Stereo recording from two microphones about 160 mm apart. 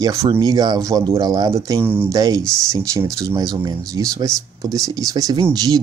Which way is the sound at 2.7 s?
20° right (ahead or behind).